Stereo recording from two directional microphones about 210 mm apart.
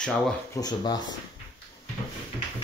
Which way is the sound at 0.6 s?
20° left (ahead or behind).